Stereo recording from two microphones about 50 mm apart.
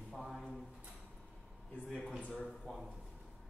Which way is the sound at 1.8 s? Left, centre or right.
Centre.